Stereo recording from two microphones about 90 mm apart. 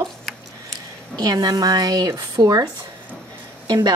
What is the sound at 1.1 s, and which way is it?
A woman's voice, 45° right (ahead or behind).